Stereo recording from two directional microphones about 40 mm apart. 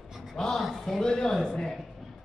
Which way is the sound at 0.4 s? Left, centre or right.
Centre.